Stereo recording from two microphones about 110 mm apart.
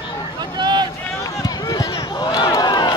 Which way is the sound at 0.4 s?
40° right (ahead or behind).